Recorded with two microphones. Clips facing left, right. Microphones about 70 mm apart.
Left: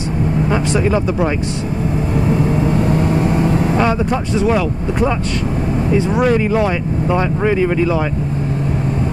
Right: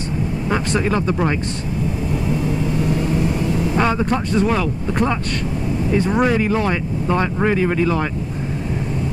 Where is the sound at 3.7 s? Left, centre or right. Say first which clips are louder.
Left 2 dB; centre.